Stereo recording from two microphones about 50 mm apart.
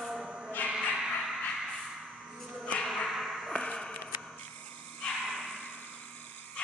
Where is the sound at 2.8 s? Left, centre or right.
Centre.